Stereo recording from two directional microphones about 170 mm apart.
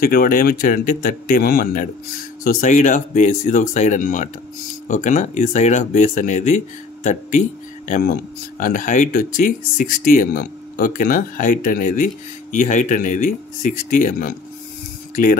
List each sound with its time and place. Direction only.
0.0 s speech: 55° left (ahead or behind)
7.9 s speech: 55° left (ahead or behind)